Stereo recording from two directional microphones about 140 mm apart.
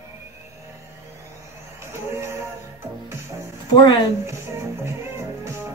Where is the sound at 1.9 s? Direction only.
20° right (ahead or behind).